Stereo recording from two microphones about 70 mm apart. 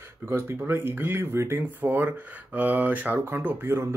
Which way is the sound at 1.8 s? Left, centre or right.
Right.